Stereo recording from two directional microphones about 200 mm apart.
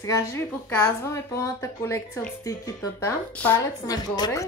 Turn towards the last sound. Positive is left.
turn(degrees=20)  # may be behind; listen again after turning